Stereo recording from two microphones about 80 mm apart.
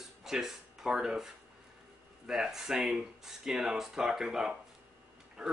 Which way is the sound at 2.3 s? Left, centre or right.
Centre.